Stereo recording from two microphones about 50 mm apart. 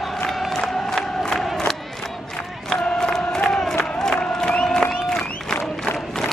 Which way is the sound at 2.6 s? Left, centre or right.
Centre.